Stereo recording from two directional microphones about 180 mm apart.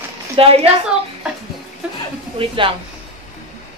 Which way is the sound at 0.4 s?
30° right (ahead or behind).